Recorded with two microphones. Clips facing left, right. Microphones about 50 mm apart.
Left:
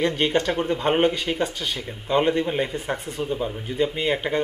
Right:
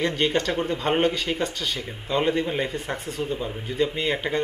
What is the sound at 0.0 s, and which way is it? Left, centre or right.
Speech, centre.